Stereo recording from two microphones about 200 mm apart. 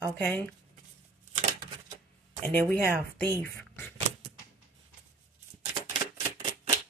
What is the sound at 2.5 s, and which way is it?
Speech, 10° left (ahead or behind).